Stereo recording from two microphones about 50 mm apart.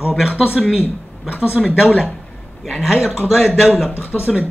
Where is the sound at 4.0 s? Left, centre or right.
Left.